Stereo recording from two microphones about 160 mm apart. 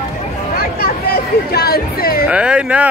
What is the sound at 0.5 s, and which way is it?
Music, 70° left (ahead or behind).